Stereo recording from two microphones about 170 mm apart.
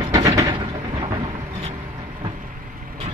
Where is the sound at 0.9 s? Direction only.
30° right (ahead or behind).